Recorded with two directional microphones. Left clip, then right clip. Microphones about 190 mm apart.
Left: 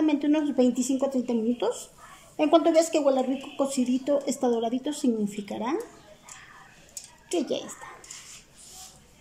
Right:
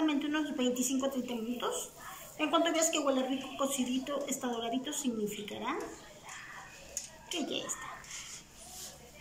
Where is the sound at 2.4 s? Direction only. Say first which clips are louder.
Left 9 dB; 65° left (ahead or behind).